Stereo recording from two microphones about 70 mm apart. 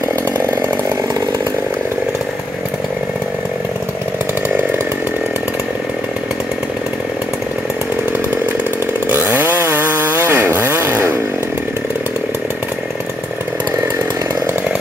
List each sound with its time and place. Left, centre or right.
9.6 s chainsaw: right